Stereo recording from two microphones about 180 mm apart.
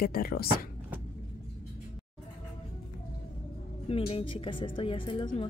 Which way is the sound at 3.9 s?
30° left (ahead or behind).